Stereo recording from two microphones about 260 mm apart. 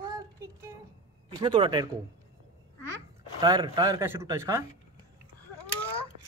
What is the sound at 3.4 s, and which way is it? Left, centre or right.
A man's voice, centre.